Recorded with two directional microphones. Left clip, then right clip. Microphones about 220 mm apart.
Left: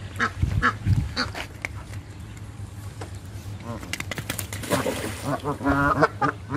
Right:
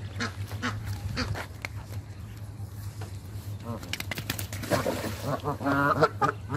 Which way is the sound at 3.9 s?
20° left (ahead or behind).